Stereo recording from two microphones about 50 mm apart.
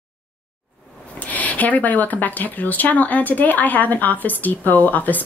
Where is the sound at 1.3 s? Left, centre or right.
Left.